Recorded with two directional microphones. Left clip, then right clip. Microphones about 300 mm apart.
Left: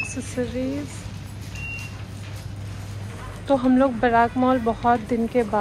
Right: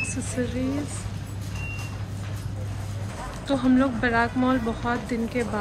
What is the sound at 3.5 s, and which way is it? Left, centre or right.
Speech, centre.